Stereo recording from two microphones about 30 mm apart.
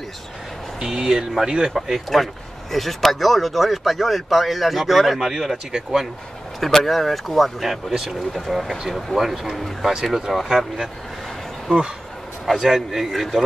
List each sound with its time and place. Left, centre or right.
0.7 s speech: right
1.7 s speech: centre
5.7 s speech: right
6.6 s speech: centre
7.9 s speech: centre
8.3 s speech: centre
12.4 s speech: centre